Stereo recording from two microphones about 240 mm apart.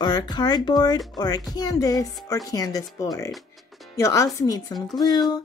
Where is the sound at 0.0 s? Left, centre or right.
Centre.